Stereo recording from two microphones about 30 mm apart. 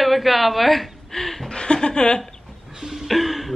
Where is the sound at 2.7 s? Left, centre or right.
Centre.